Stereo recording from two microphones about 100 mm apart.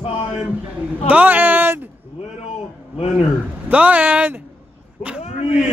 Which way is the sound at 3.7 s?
15° right (ahead or behind).